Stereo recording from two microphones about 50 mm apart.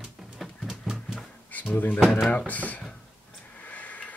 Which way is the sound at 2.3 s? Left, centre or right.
Left.